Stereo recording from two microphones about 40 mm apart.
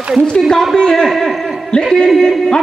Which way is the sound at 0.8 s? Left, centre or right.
Centre.